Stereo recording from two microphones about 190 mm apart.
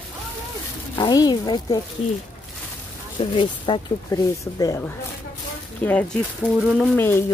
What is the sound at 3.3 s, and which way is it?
Speech, 25° left (ahead or behind).